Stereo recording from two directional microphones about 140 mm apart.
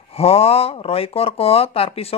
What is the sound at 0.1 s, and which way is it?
Speech, 45° left (ahead or behind).